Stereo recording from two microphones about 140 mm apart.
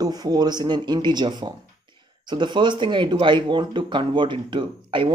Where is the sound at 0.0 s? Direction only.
30° right (ahead or behind).